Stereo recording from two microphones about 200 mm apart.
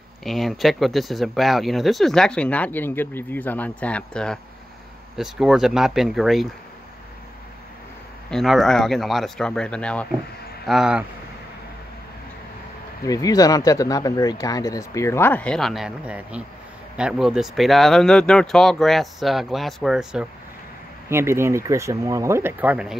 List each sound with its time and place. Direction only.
0.2 s speech: centre (ahead or behind)
8.3 s speech: centre (ahead or behind)
13.0 s speech: 20° left (ahead or behind); by 22.9 s 5° right (ahead or behind)